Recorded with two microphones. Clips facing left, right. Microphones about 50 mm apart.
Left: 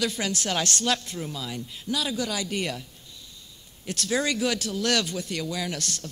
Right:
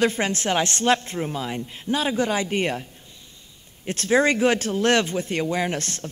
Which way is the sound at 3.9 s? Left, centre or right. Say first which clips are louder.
Right 7 dB; right.